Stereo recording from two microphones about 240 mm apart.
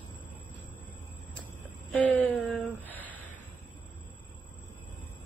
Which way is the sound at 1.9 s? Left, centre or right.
Centre.